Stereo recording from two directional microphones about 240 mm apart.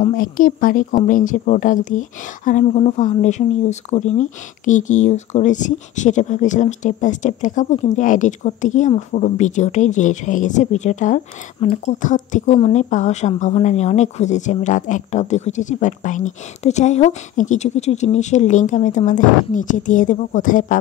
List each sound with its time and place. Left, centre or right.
0.0 s speech: left